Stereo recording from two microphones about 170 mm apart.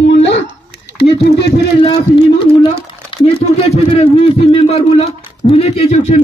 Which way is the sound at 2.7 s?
35° left (ahead or behind).